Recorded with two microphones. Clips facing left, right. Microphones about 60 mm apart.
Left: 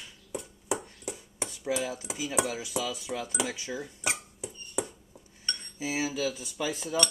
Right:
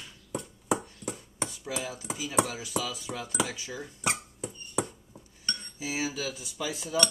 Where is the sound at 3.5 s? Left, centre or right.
Left.